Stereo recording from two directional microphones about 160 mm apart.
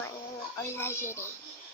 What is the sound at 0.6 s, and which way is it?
Speech, 15° left (ahead or behind).